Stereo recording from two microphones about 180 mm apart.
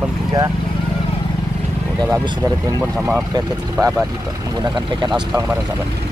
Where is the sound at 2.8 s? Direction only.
Centre (ahead or behind).